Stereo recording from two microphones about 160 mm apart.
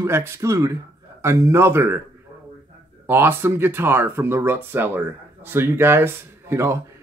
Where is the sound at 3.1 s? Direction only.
15° right (ahead or behind).